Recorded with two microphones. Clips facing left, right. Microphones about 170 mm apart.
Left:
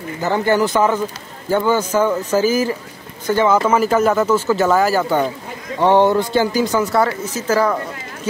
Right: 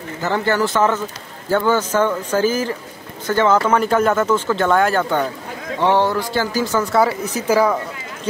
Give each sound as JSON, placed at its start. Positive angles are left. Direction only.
{"t": 0.2, "sound": "speech", "side_deg": 15}
{"t": 6.9, "sound": "speech", "side_deg": -5}